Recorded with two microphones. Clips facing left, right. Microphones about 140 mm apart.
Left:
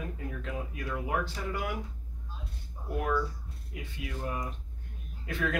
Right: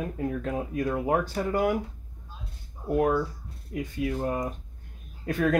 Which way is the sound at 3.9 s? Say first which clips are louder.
Right 8 dB; 45° right (ahead or behind).